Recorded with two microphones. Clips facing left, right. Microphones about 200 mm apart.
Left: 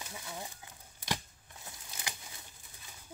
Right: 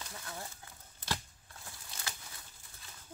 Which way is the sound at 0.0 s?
15° left (ahead or behind).